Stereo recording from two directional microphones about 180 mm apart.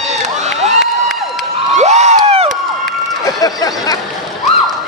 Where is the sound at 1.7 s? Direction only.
40° right (ahead or behind).